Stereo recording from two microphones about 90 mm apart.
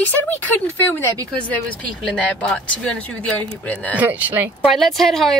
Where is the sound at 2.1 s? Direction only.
15° left (ahead or behind).